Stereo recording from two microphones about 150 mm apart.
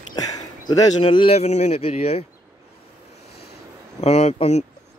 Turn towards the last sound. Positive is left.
turn(degrees=45)  # may be behind; listen again after turning